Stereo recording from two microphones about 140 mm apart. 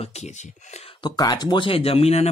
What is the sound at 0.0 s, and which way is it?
Speech, 50° left (ahead or behind).